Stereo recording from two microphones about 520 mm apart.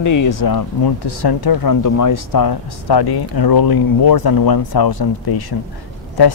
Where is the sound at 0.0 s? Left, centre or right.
Left.